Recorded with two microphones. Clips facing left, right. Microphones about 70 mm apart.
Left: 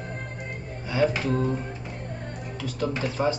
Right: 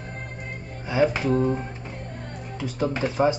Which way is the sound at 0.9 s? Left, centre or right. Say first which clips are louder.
Right 2 dB; centre.